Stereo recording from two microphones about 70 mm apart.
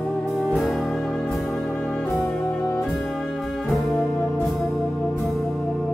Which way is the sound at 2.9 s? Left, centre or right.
Centre.